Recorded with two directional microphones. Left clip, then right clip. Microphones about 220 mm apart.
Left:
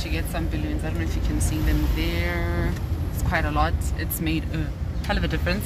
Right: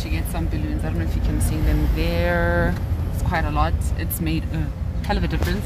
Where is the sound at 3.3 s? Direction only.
5° right (ahead or behind).